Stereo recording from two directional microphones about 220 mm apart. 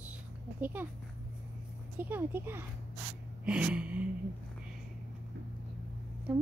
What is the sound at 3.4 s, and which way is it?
Gasp, 5° right (ahead or behind).